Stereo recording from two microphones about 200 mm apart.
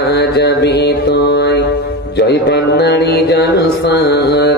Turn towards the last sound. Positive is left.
turn(degrees=55)  # may be behind; listen again after turning